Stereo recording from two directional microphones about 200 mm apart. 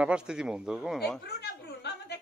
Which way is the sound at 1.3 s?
55° left (ahead or behind).